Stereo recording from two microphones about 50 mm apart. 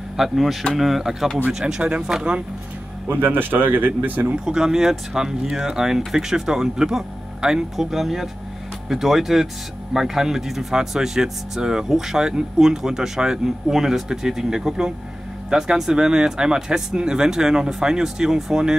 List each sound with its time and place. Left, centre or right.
0.2 s speech: centre
1.8 s speech: centre
3.1 s speech: right
4.5 s speech: centre